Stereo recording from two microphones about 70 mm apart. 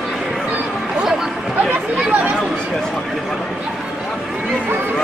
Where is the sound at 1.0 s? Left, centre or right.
Centre.